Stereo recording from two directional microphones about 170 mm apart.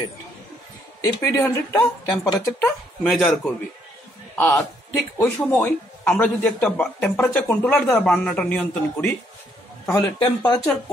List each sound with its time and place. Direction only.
1.0 s a man's voice: 15° left (ahead or behind)
9.8 s a man's voice: 20° left (ahead or behind)